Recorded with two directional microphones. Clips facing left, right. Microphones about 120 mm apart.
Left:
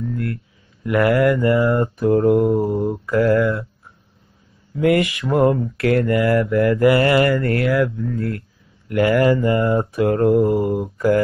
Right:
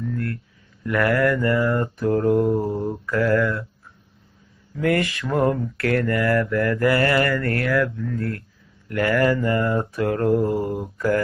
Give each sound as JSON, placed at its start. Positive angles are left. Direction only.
{"t": 0.0, "sound": "a sound", "side_deg": 15}
{"t": 0.8, "sound": "mantra", "side_deg": 20}
{"t": 4.7, "sound": "mantra", "side_deg": 15}